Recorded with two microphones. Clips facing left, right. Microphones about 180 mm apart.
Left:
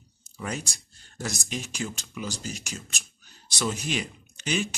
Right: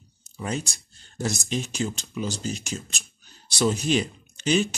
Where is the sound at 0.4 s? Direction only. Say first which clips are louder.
Right 4 dB; 25° right (ahead or behind).